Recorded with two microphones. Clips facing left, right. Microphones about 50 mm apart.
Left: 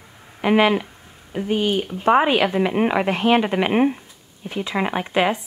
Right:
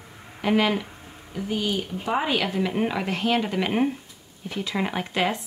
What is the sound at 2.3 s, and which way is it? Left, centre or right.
A woman's voice, left.